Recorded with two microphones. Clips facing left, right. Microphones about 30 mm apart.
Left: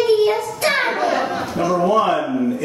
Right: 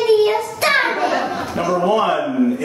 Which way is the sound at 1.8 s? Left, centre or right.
Centre.